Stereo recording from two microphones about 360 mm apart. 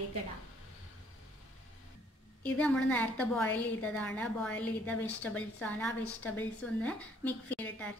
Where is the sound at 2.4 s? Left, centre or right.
Centre.